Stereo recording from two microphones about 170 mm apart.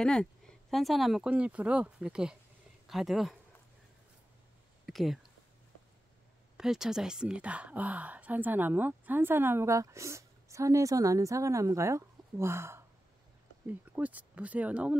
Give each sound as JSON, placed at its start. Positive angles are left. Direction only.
{"t": 0.0, "sound": "speech", "side_deg": 5}
{"t": 4.8, "sound": "speech", "side_deg": 0}
{"t": 6.5, "sound": "speech", "side_deg": -5}